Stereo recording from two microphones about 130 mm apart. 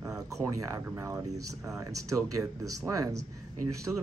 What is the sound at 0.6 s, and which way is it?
Speech, 25° right (ahead or behind).